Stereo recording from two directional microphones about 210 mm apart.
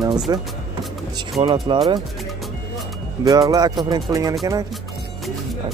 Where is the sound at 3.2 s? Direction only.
15° right (ahead or behind).